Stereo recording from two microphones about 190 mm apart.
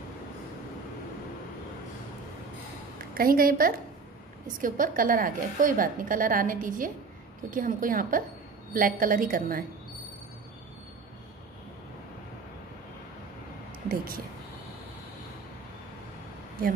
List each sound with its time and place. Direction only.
3.2 s a woman's voice: 50° right (ahead or behind)
13.8 s a woman's voice: 50° right (ahead or behind)